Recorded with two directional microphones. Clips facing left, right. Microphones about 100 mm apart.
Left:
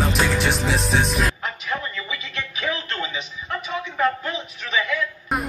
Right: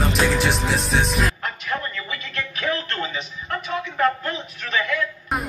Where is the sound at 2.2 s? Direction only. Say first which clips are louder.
Right 1 dB; 50° right (ahead or behind).